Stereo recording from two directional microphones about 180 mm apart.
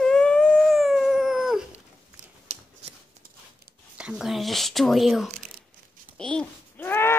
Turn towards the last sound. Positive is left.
turn(degrees=10)  # may be behind; listen again after turning